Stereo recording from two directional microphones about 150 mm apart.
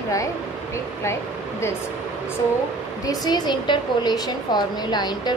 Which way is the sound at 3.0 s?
25° left (ahead or behind).